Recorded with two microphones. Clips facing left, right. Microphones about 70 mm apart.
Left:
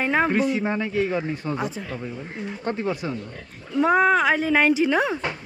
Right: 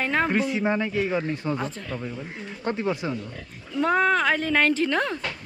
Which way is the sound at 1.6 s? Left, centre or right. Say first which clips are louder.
Left 2 dB; centre.